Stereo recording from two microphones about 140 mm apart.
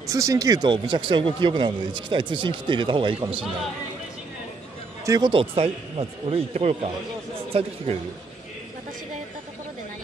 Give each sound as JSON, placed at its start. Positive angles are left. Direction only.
{"t": 0.0, "sound": "speech", "side_deg": -25}
{"t": 5.0, "sound": "speech", "side_deg": -25}
{"t": 5.3, "sound": "speech", "side_deg": -40}